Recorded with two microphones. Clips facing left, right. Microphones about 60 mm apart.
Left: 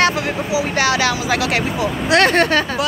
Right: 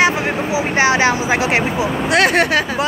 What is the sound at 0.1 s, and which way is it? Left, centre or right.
Speech, right.